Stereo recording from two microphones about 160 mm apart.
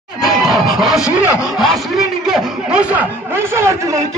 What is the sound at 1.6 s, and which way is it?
A man's voice, centre (ahead or behind).